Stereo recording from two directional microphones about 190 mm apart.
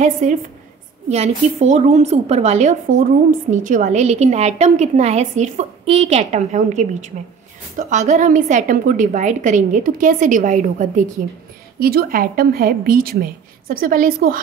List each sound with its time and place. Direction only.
0.0 s a woman's voice: 40° right (ahead or behind)
11.8 s a woman's voice: 50° right (ahead or behind)